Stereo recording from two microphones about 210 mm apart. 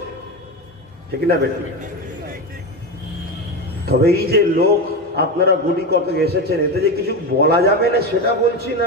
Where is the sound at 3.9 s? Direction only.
50° right (ahead or behind).